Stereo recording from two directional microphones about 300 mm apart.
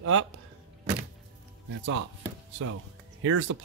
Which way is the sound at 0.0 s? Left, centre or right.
Right.